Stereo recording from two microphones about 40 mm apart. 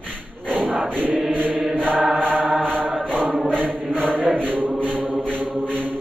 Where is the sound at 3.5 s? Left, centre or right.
Centre.